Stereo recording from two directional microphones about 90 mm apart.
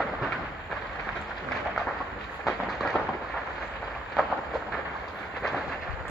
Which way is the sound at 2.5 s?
5° right (ahead or behind).